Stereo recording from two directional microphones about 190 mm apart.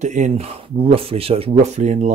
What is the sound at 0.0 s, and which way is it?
Speech, 40° right (ahead or behind).